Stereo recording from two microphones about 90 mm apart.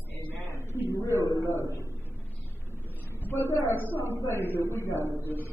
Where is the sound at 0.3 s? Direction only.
30° left (ahead or behind).